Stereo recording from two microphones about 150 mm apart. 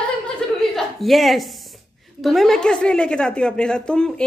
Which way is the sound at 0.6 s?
Centre (ahead or behind).